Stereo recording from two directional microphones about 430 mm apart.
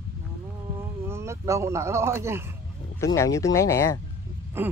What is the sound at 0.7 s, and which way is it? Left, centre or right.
Speech, centre.